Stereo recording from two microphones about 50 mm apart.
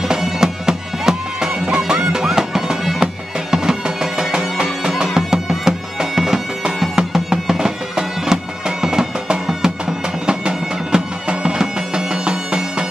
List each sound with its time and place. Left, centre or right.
0.2 s music: centre
5.7 s bagpipes: centre
7.0 s music: centre